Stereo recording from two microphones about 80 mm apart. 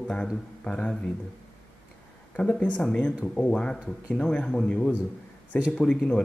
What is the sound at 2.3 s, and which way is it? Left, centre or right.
Speech, centre.